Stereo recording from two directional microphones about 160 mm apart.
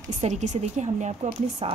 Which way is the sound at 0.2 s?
50° right (ahead or behind).